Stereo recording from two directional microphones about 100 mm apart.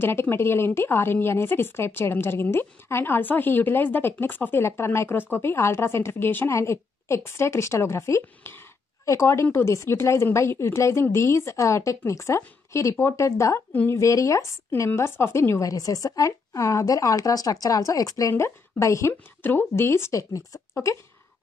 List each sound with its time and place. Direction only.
0.0 s a woman's voice: 25° left (ahead or behind)